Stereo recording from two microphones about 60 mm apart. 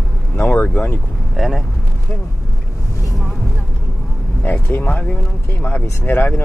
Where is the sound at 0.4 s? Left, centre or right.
Left.